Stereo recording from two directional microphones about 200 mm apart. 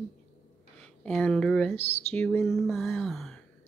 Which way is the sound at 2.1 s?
10° left (ahead or behind).